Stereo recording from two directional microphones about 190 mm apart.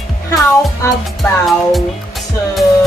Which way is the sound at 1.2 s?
Centre (ahead or behind).